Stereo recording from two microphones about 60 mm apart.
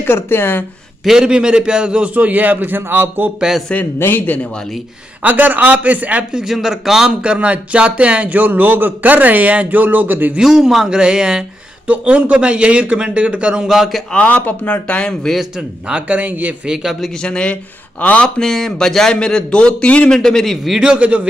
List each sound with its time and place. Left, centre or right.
0.0 s speech: left
1.0 s a man's voice: centre; by 3.3 s right
3.3 s a man's voice: centre
4.0 s speech: left
5.2 s speech: right
6.4 s a man's voice: centre
7.1 s speech: centre
10.3 s a man's voice: centre
14.1 s a man's voice: left
15.9 s speech: right
16.6 s a man's voice: centre
17.2 s a man's voice: centre
18.4 s speech: centre
20.8 s speech: centre